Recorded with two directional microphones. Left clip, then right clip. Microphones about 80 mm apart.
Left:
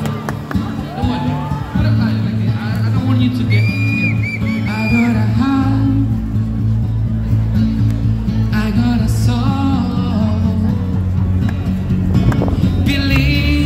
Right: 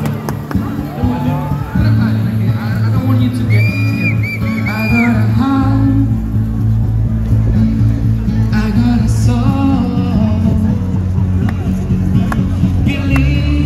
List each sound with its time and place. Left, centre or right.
1.8 s music: centre
5.0 s music: centre
8.3 s music: centre